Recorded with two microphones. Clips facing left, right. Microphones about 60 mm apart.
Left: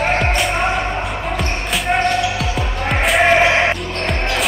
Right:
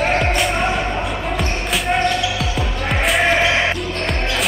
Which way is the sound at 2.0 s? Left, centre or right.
Left.